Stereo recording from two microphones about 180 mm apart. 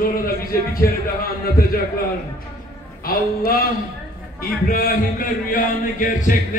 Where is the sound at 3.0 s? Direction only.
55° left (ahead or behind).